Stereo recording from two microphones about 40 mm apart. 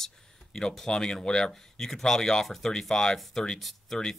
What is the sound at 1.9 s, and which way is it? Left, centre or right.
Speech, centre.